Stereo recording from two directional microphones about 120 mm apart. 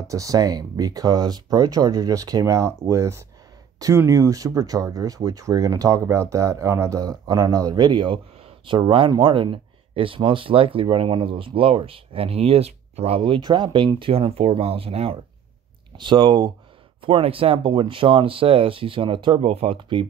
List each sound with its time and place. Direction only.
0.0 s speech: 25° right (ahead or behind); by 13.2 s 60° right (ahead or behind)
13.2 s speech: 40° right (ahead or behind)
16.0 s speech: 40° right (ahead or behind)
19.4 s speech: 60° right (ahead or behind)
19.8 s speech: 45° right (ahead or behind)